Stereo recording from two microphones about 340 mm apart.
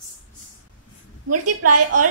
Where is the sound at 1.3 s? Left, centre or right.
Right.